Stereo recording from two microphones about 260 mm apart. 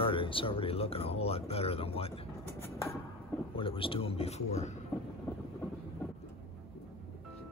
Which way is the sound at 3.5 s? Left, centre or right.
Centre.